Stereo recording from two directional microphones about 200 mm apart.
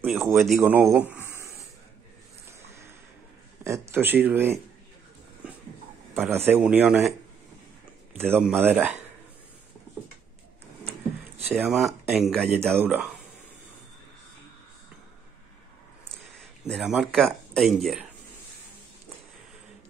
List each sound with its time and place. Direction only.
0.0 s speech: centre (ahead or behind)
3.6 s speech: 15° right (ahead or behind)
6.5 s speech: 10° right (ahead or behind)
11.5 s speech: centre (ahead or behind)
16.6 s speech: centre (ahead or behind)